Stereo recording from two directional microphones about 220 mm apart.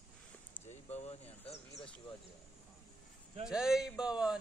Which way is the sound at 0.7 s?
30° left (ahead or behind).